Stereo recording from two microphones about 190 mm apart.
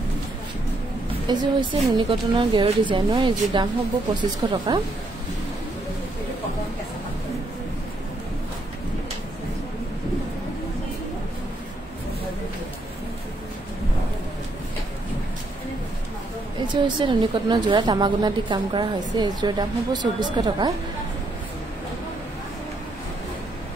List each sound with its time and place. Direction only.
1.2 s a woman's voice: 25° right (ahead or behind)
16.6 s a woman's voice: 25° right (ahead or behind)